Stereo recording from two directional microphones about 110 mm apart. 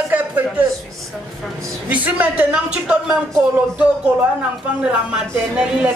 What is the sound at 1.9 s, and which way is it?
Speech, 15° right (ahead or behind).